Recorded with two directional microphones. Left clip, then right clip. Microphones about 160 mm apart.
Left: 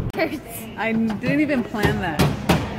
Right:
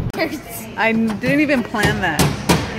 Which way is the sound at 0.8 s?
20° right (ahead or behind).